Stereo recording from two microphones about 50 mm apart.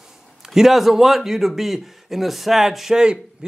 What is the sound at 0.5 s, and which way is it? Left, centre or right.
A man's voice, centre.